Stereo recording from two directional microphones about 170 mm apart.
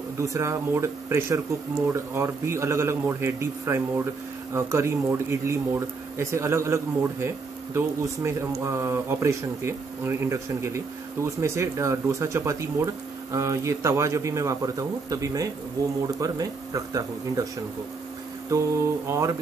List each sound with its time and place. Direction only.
0.2 s speech: 15° right (ahead or behind)
18.5 s speech: 20° right (ahead or behind)